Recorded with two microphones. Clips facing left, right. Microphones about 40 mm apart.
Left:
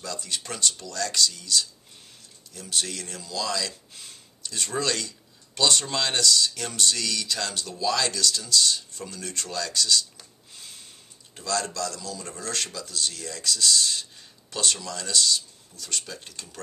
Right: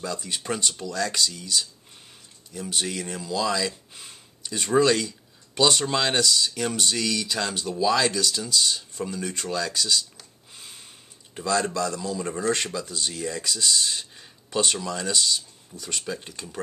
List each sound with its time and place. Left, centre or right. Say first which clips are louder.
0.0 s speech: right 3 dB; centre
10.5 s a sound: right 1 dB; centre
11.3 s speech: right 4 dB; centre